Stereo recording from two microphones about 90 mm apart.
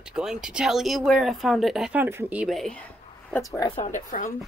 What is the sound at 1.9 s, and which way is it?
Speech, 25° right (ahead or behind).